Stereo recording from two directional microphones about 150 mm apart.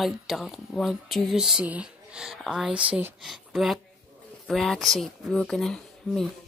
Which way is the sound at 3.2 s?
Centre (ahead or behind).